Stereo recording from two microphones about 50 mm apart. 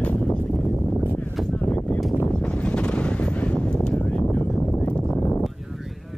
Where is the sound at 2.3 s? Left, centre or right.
Centre.